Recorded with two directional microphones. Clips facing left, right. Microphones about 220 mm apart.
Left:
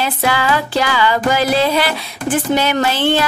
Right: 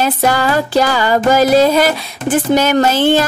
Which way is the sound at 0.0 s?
45° right (ahead or behind).